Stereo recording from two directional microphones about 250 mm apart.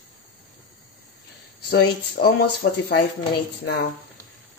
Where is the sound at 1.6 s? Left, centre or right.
Left.